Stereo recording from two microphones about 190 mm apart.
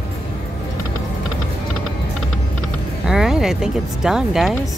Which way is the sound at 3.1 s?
5° right (ahead or behind).